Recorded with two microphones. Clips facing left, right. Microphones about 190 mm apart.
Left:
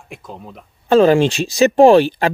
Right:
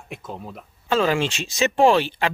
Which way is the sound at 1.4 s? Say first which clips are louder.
Left 8 dB; 35° left (ahead or behind).